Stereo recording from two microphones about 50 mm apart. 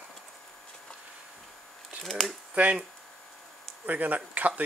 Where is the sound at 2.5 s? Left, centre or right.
Right.